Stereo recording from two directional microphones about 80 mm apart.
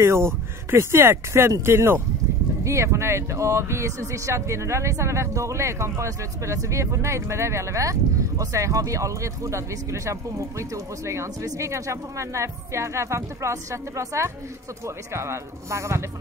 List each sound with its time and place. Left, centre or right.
0.0 s speech: right